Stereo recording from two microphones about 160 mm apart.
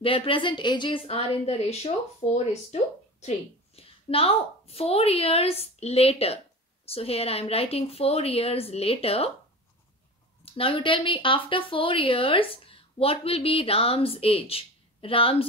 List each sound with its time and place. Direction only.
0.0 s a woman's voice: 35° left (ahead or behind)
10.4 s a woman's voice: 35° left (ahead or behind)